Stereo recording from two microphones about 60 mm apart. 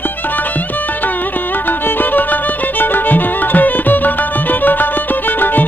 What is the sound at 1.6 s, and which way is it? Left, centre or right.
Violin, left.